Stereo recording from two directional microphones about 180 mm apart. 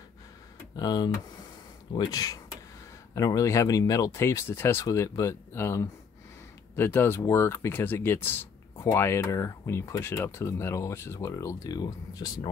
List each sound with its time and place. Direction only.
0.7 s speech: 20° left (ahead or behind)